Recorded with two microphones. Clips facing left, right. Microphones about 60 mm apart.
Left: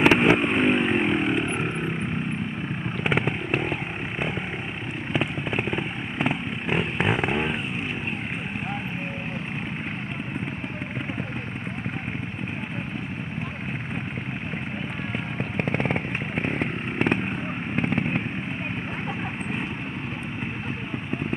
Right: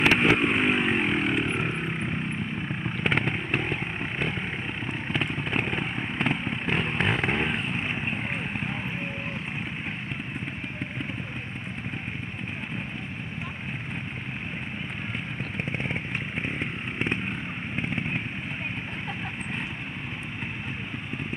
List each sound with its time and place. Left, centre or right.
0.0 s vehicle: centre
3.0 s vehicle: centre
15.5 s a sound: left
16.5 s chainsaw: left
17.7 s fireworks: left